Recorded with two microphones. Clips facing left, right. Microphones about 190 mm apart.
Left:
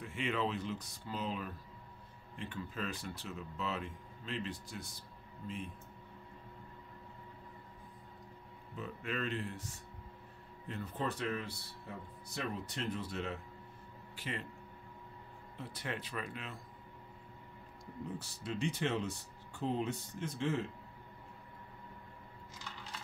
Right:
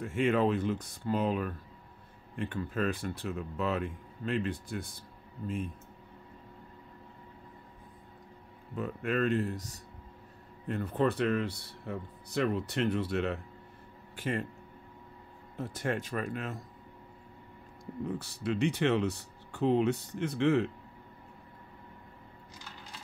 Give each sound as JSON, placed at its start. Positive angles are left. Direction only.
{"t": 0.0, "sound": "speech", "side_deg": -50}
{"t": 8.7, "sound": "speech", "side_deg": -55}
{"t": 10.7, "sound": "speech", "side_deg": -55}
{"t": 14.1, "sound": "speech", "side_deg": -50}
{"t": 15.5, "sound": "speech", "side_deg": -45}
{"t": 18.0, "sound": "speech", "side_deg": -65}